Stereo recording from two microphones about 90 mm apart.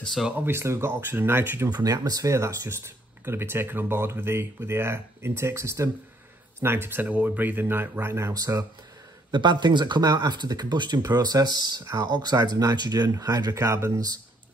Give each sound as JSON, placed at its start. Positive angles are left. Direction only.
{"t": 0.0, "sound": "speech", "side_deg": 0}
{"t": 0.4, "sound": "speech", "side_deg": -30}
{"t": 1.7, "sound": "speech", "side_deg": -45}
{"t": 9.3, "sound": "speech", "side_deg": -55}